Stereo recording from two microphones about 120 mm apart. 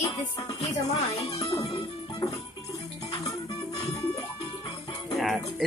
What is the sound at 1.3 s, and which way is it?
Music, 25° left (ahead or behind).